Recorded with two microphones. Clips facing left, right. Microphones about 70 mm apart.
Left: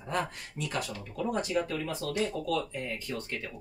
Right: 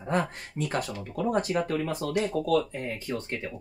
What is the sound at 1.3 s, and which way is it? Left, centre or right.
Speech, right.